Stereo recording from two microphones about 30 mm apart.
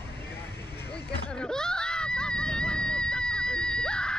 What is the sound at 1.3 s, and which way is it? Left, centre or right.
Screaming, left.